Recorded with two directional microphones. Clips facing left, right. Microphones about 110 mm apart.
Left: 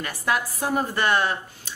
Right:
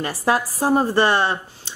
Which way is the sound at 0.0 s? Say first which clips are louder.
Right 5 dB; 30° right (ahead or behind).